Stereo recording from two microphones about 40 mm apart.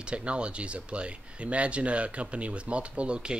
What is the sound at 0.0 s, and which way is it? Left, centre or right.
Speech, right.